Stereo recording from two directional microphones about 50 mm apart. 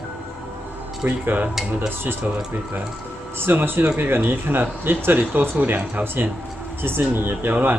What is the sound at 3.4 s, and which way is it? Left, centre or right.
Speech, right.